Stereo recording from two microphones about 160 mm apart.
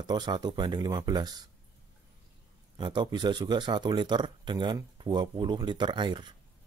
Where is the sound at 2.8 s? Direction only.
30° right (ahead or behind).